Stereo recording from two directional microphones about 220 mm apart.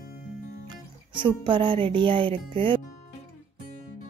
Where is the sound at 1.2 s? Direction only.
20° right (ahead or behind).